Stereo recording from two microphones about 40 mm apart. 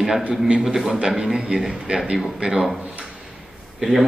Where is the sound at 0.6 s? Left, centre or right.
Centre.